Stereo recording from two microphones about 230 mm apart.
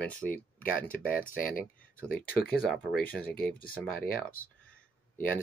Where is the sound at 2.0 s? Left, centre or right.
Centre.